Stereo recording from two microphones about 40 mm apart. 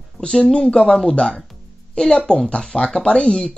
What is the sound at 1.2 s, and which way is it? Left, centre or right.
Speech, left.